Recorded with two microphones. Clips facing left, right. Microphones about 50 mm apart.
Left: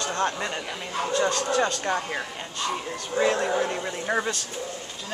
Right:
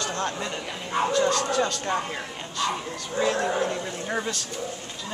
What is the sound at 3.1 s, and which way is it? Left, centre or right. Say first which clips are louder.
A man's voice: left 1 dB; left.